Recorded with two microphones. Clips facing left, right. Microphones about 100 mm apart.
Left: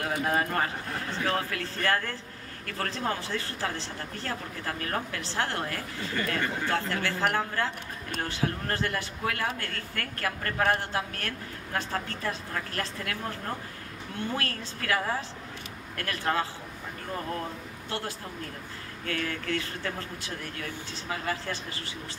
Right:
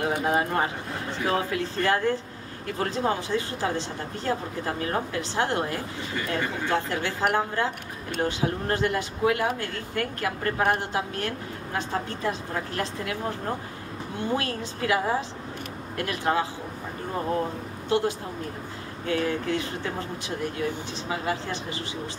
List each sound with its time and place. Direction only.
0.2 s speech: 20° right (ahead or behind)
17.8 s speech: 20° right (ahead or behind)